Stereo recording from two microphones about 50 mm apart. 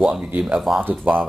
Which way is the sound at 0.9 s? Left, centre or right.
Right.